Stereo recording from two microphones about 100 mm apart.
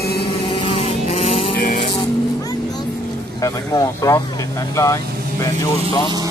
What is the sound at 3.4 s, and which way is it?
Speech, 35° left (ahead or behind).